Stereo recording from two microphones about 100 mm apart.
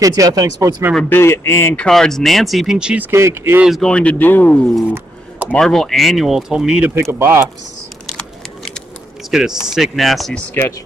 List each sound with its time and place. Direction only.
0.0 s speech: 40° right (ahead or behind)
1.0 s speech: 25° left (ahead or behind)
1.8 s speech: 5° left (ahead or behind)
3.1 s speech: 25° right (ahead or behind)
3.8 s speech: 10° left (ahead or behind)
5.5 s speech: 5° left (ahead or behind)
7.0 s speech: 25° right (ahead or behind)
9.3 s speech: 5° right (ahead or behind)